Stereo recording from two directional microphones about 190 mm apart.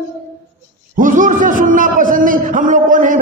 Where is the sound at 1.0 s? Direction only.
45° right (ahead or behind).